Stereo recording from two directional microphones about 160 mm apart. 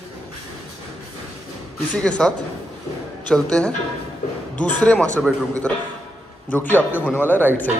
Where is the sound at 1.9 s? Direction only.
5° left (ahead or behind).